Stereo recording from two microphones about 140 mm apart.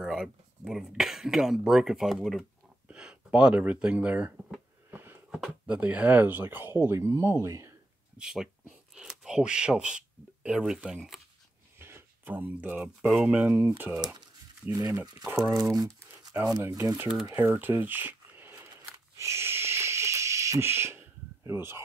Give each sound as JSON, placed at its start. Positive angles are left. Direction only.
{"t": 0.0, "sound": "speech", "side_deg": -5}
{"t": 4.9, "sound": "a sound", "side_deg": -15}
{"t": 5.3, "sound": "speech", "side_deg": -5}
{"t": 8.2, "sound": "speech", "side_deg": -5}
{"t": 11.8, "sound": "speech", "side_deg": -15}
{"t": 15.1, "sound": "speech", "side_deg": -20}
{"t": 19.1, "sound": "a sound", "side_deg": -20}